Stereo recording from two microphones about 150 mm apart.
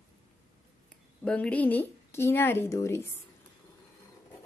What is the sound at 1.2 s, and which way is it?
A woman's voice, 5° left (ahead or behind).